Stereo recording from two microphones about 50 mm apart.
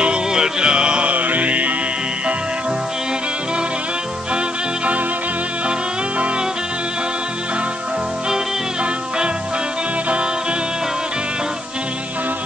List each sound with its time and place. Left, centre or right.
0.0 s music: centre
1.1 s music: right